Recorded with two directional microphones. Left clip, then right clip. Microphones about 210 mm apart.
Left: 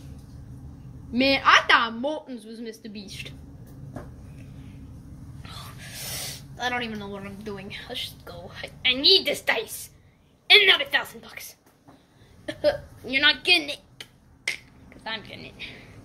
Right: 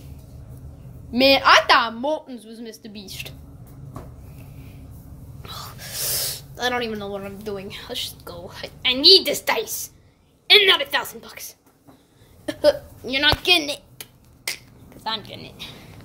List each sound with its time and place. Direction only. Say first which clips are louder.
1.1 s a woman's voice: right 4 dB; 10° right (ahead or behind)
5.4 s a sound: right 6 dB; 15° right (ahead or behind)
6.0 s snort: right 7 dB; 25° right (ahead or behind)
6.6 s a woman's voice: right 4 dB; 10° right (ahead or behind)
12.4 s a woman's voice: right 6 dB; 10° right (ahead or behind)
15.0 s a woman's voice: right 5 dB; 5° right (ahead or behind)